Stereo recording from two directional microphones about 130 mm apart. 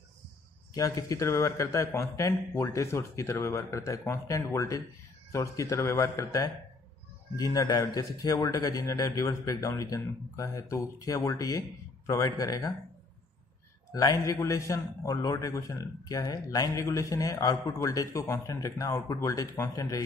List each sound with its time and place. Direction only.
0.7 s a man's voice: 25° left (ahead or behind)
13.9 s a man's voice: 25° left (ahead or behind)